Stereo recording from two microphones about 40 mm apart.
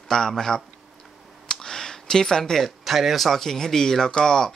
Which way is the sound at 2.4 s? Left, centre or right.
Centre.